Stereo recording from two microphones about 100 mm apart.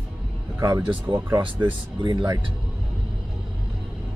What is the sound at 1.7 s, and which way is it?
Speech, 45° right (ahead or behind).